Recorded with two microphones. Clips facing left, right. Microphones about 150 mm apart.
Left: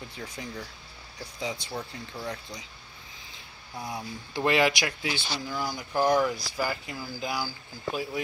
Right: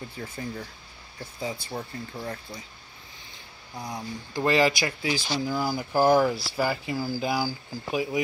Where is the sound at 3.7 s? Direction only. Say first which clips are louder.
Right 1 dB; 5° left (ahead or behind).